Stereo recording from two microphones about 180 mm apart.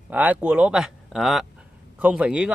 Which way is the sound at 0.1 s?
10° right (ahead or behind).